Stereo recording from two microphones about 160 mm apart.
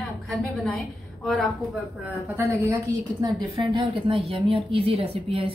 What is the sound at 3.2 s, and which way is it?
A woman's voice, 30° right (ahead or behind).